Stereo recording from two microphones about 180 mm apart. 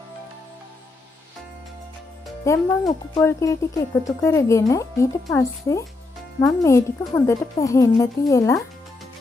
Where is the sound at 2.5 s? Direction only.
15° left (ahead or behind).